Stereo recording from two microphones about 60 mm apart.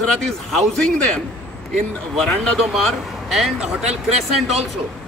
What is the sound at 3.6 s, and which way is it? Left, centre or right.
Speech, centre.